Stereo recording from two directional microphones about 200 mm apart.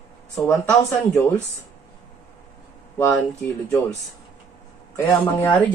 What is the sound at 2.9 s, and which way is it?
Speech, 10° left (ahead or behind).